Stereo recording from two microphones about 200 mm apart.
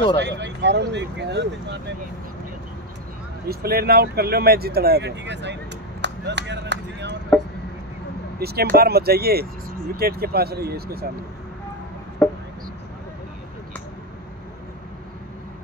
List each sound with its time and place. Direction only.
0.2 s speech: 60° right (ahead or behind)
3.4 s speech: 50° right (ahead or behind)
8.4 s speech: 50° right (ahead or behind)
12.2 s a sound: 10° left (ahead or behind)